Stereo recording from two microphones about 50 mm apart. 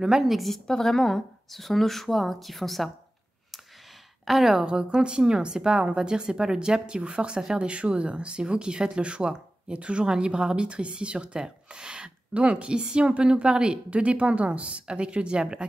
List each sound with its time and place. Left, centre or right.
0.0 s a woman's voice: centre
0.7 s speech: centre
4.3 s a woman's voice: centre; by 15.6 s right